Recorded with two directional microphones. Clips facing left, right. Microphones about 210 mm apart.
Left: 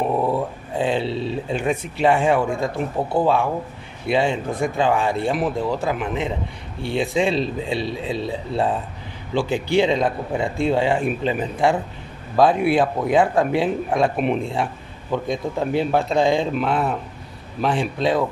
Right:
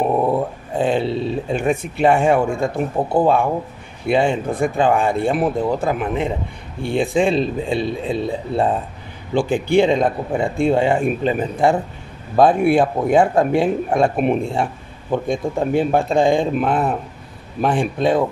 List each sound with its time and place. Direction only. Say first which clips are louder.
0.7 s speech: right 3 dB; 50° right (ahead or behind)